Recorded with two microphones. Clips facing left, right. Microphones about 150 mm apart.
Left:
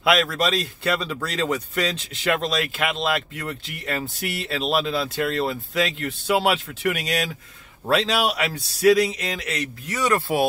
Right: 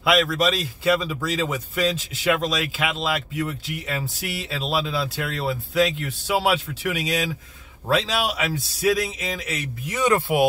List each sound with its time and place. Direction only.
0.0 s a man's voice: centre (ahead or behind)
9.8 s speech: 20° right (ahead or behind)